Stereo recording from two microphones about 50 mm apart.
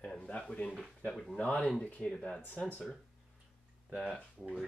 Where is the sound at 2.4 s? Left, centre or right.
Left.